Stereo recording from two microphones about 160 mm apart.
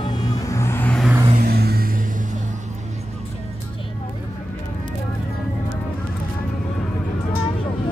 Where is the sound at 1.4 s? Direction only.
75° right (ahead or behind).